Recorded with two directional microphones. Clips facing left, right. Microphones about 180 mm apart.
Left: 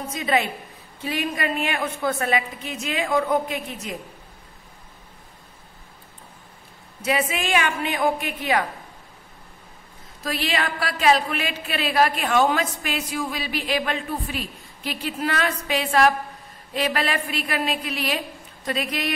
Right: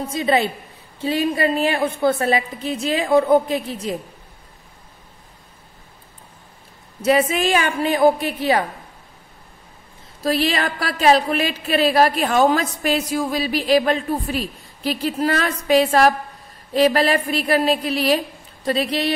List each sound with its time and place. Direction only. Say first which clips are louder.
0.1 s a woman's voice: right 4 dB; 30° right (ahead or behind)
7.0 s a woman's voice: right 7 dB; 40° right (ahead or behind)
10.2 s a woman's voice: right 6 dB; 35° right (ahead or behind)